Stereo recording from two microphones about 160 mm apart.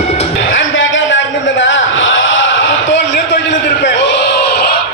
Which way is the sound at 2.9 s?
90° left.